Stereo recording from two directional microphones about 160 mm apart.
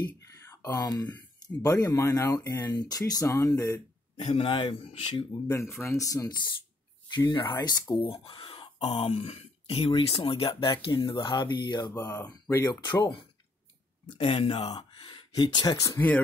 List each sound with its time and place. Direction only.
0.0 s a sound: 20° left (ahead or behind)
1.0 s speech: 15° left (ahead or behind)
4.2 s speech: 40° left (ahead or behind)
5.8 s speech: 20° left (ahead or behind)